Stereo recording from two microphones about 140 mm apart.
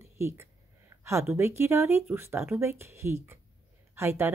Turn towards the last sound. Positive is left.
turn(degrees=-20)  # may be behind; listen again after turning